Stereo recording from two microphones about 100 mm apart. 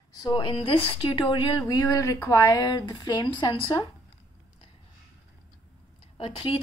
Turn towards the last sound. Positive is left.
turn(degrees=65)  # may be behind; listen again after turning